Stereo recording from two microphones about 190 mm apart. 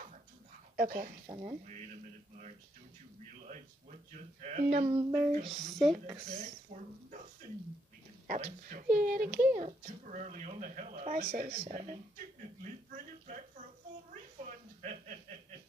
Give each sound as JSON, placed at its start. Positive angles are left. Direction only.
{"t": 0.7, "sound": "speech", "side_deg": -45}
{"t": 1.2, "sound": "speech", "side_deg": -30}
{"t": 4.4, "sound": "speech", "side_deg": -40}
{"t": 4.9, "sound": "speech", "side_deg": -10}
{"t": 5.4, "sound": "speech", "side_deg": 0}
{"t": 6.3, "sound": "speech", "side_deg": -40}
{"t": 8.3, "sound": "speech", "side_deg": -40}
{"t": 11.2, "sound": "speech", "side_deg": -50}
{"t": 11.5, "sound": "speech", "side_deg": -35}
{"t": 12.4, "sound": "a sound", "side_deg": -40}
{"t": 14.4, "sound": "a sound", "side_deg": -40}